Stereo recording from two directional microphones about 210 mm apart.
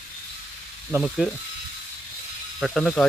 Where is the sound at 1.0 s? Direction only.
Centre (ahead or behind).